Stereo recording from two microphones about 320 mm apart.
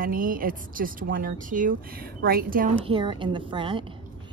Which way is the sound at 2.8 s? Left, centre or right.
Centre.